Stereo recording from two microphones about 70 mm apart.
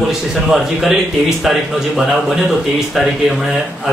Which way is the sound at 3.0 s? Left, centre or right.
Centre.